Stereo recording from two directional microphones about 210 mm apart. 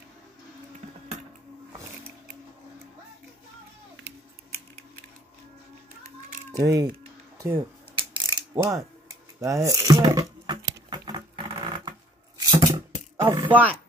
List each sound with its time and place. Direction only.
6.5 s speech: 15° right (ahead or behind)
8.1 s mechanisms: 20° right (ahead or behind)
9.4 s speech: 15° right (ahead or behind)
10.9 s sewing machine: 20° right (ahead or behind)
12.4 s a sound: 20° right (ahead or behind)
13.2 s speech: 10° right (ahead or behind)